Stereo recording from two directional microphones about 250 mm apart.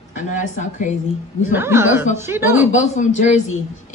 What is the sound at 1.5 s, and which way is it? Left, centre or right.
Speech, centre.